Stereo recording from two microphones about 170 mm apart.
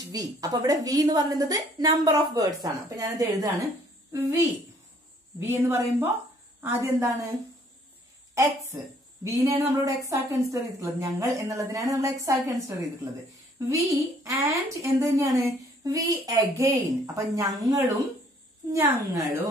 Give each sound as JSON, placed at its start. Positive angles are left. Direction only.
{"t": 0.1, "sound": "a woman's voice", "side_deg": -20}
{"t": 8.7, "sound": "a woman's voice", "side_deg": -15}